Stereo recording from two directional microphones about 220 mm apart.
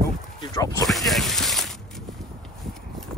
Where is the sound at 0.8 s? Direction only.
Centre (ahead or behind).